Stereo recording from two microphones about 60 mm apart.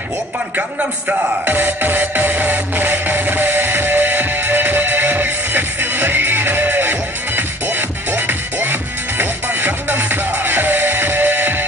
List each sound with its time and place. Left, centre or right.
0.6 s music: right